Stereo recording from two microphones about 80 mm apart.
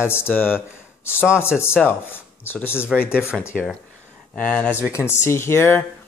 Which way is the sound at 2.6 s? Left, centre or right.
Left.